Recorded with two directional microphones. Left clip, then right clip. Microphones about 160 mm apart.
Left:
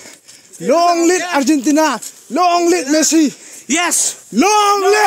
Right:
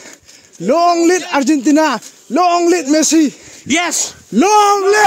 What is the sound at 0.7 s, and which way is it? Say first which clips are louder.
A man's voice: right 1 dB; 45° right (ahead or behind).